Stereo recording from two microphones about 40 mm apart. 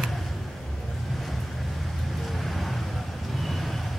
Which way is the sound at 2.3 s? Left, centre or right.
Centre.